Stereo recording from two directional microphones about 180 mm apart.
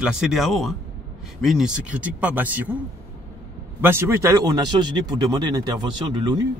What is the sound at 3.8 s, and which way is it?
A man's voice, 15° right (ahead or behind).